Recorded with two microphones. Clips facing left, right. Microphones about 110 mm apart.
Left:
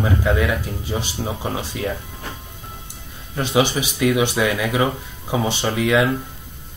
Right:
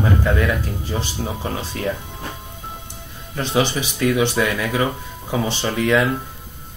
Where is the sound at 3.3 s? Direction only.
10° left (ahead or behind).